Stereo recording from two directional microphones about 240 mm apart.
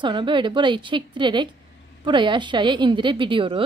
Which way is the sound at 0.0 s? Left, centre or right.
Centre.